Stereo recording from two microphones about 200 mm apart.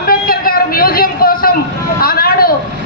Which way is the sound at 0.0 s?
45° left (ahead or behind).